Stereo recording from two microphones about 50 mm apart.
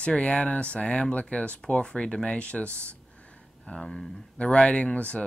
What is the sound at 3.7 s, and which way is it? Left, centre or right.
Speech, centre.